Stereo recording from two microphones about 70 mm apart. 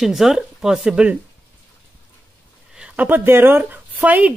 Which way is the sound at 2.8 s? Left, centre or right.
Right.